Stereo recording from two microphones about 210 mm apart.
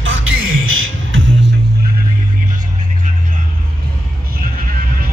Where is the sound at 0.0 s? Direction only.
70° right (ahead or behind).